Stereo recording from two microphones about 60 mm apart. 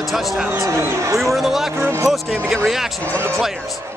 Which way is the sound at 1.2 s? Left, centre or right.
Centre.